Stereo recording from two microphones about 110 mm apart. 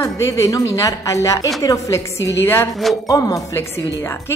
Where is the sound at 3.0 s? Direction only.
30° left (ahead or behind).